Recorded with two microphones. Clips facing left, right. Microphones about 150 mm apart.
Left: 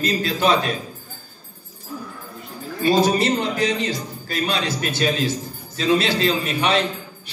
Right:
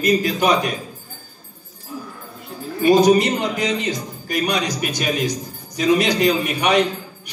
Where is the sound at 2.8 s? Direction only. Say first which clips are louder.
Right 4 dB; 20° right (ahead or behind).